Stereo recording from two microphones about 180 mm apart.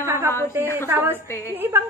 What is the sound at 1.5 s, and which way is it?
Speech, 15° right (ahead or behind).